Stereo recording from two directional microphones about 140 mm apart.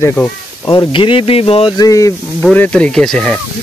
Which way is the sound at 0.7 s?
35° left (ahead or behind).